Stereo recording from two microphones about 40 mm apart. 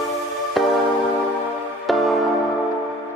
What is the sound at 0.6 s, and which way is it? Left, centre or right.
Music, centre.